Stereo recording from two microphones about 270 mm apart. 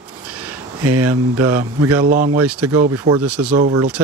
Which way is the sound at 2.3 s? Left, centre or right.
Right.